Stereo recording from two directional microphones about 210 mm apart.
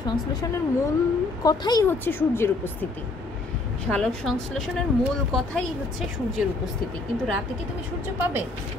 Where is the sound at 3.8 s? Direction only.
Centre (ahead or behind).